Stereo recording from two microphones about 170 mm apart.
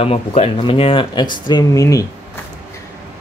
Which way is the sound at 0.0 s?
35° left (ahead or behind).